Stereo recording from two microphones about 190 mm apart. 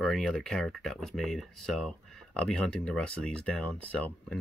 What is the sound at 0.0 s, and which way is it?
Speech, centre (ahead or behind).